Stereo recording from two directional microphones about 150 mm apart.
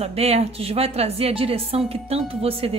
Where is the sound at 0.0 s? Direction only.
45° right (ahead or behind).